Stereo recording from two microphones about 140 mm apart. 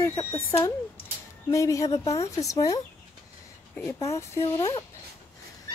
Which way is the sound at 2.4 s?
25° left (ahead or behind).